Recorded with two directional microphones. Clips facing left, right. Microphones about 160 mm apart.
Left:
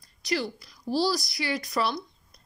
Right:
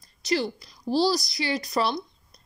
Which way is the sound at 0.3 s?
25° right (ahead or behind).